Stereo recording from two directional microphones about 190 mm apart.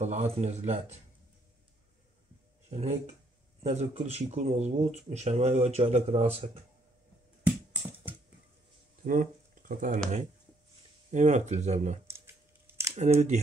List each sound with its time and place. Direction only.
0.0 s speech: 35° right (ahead or behind)
2.7 s speech: 35° right (ahead or behind)
9.0 s a sound: 45° right (ahead or behind)
11.1 s speech: 40° right (ahead or behind)
12.1 s scissors: 10° right (ahead or behind)
12.9 s speech: 35° right (ahead or behind)